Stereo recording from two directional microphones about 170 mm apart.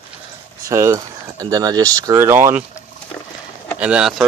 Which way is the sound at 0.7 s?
15° right (ahead or behind).